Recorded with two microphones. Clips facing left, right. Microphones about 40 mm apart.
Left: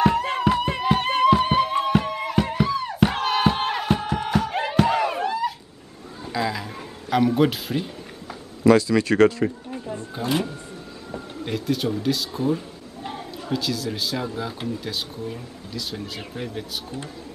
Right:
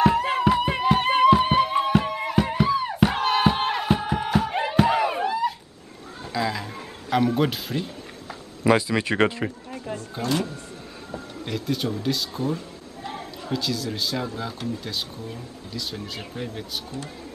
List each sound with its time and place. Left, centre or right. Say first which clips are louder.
0.0 s music: even; centre
6.3 s a sound: left 1 dB; centre
8.6 s speech: left 4 dB; centre
10.2 s speech: left 1 dB; centre
11.5 s speech: left 2 dB; centre